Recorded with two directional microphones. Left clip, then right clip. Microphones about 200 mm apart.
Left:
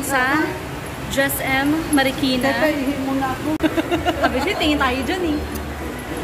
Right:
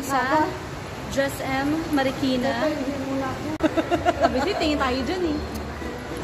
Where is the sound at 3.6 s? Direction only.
50° right (ahead or behind).